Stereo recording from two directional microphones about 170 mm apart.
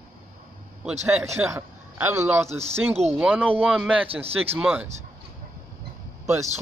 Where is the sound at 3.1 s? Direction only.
10° right (ahead or behind).